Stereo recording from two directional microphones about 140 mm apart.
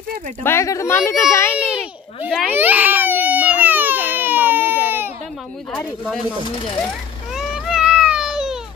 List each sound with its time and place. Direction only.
0.4 s a child's voice: 20° left (ahead or behind)
2.2 s baby cry: 10° right (ahead or behind)
6.5 s speech: 40° left (ahead or behind)
7.3 s a sound: 5° right (ahead or behind)